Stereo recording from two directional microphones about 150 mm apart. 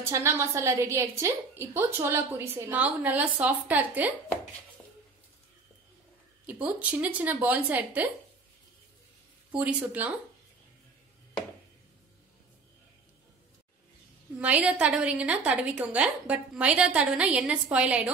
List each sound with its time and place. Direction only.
0.1 s a woman's voice: 15° right (ahead or behind)
6.4 s a woman's voice: 10° right (ahead or behind)
9.6 s a woman's voice: 10° right (ahead or behind)
14.4 s a woman's voice: 10° right (ahead or behind)